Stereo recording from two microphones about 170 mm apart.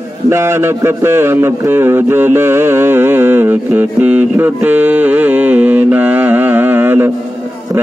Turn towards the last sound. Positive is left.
turn(degrees=-10)  # may be behind; listen again after turning